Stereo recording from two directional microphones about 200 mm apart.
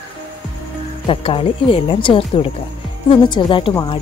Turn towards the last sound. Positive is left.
turn(degrees=20)  # may be behind; listen again after turning